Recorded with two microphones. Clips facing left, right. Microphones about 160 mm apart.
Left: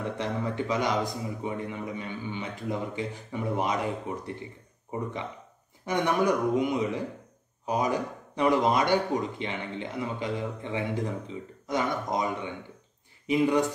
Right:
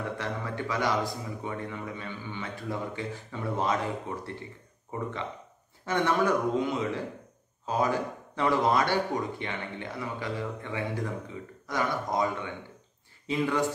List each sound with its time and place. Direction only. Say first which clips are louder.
0.2 s a man's voice: left 3 dB; 20° left (ahead or behind)